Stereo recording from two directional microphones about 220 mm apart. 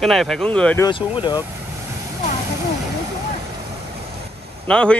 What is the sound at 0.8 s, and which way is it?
Speech, 20° left (ahead or behind).